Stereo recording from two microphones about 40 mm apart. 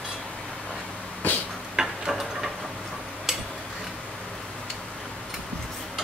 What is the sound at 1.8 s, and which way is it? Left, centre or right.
Tick-tock, centre.